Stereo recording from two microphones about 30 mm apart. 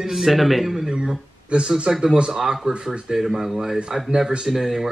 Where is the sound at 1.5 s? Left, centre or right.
Right.